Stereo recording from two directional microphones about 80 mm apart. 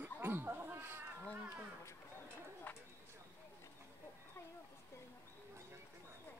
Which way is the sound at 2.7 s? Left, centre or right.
Left.